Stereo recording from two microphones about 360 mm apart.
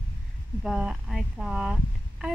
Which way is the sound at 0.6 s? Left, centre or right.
Centre.